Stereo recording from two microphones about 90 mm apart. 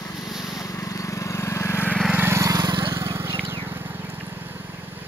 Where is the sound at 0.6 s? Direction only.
40° left (ahead or behind).